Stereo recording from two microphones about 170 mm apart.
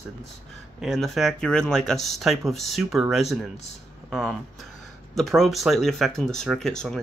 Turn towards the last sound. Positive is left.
turn(degrees=5)  # may be behind; listen again after turning